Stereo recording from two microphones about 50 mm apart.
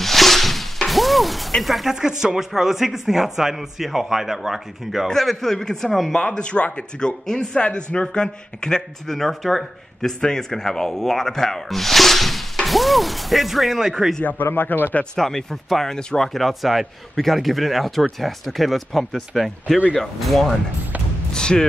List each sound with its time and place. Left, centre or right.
0.0 s music: centre
1.6 s speech: centre
6.1 s speech: centre
14.2 s speech: left
15.1 s speech: centre
16.3 s speech: centre
21.3 s speech: centre